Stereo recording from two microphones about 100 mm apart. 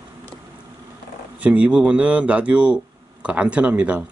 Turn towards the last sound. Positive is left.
turn(degrees=-10)  # may be behind; listen again after turning